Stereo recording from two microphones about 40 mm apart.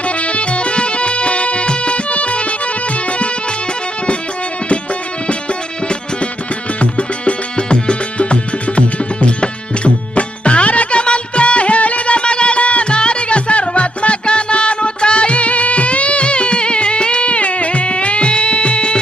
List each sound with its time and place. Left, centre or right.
0.2 s music: left
6.8 s music: left